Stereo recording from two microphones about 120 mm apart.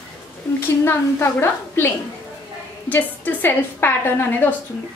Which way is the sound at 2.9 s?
15° left (ahead or behind).